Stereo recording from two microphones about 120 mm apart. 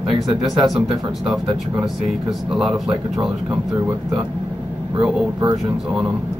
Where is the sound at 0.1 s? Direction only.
40° right (ahead or behind).